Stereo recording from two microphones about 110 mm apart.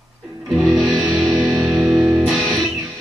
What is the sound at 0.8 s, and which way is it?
Music, 30° right (ahead or behind).